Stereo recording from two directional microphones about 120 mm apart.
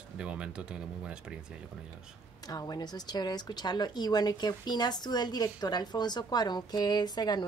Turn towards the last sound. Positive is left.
turn(degrees=35)  # may be behind; listen again after turning